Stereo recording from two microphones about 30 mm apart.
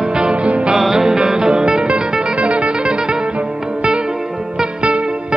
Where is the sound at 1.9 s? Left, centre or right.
Right.